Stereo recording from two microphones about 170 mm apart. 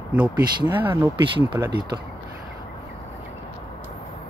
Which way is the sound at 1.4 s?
25° right (ahead or behind).